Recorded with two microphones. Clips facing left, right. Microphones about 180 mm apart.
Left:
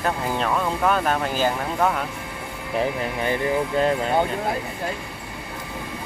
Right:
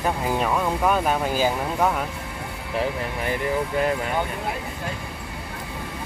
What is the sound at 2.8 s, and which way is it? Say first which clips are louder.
Speech: left 2 dB; 20° left (ahead or behind).